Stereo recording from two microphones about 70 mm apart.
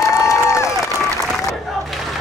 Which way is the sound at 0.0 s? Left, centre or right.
Left.